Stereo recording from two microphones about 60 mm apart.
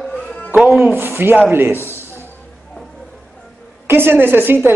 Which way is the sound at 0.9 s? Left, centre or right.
Right.